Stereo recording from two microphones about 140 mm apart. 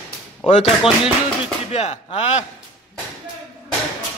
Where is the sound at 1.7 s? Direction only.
50° left (ahead or behind).